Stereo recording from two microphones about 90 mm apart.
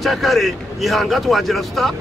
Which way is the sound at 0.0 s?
Centre (ahead or behind).